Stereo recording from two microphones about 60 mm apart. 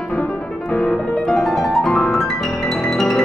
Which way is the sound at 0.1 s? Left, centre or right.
Centre.